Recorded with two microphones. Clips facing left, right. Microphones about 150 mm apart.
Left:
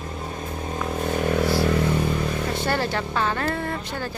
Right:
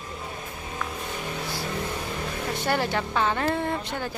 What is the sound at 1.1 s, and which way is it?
Vehicle, 60° left (ahead or behind).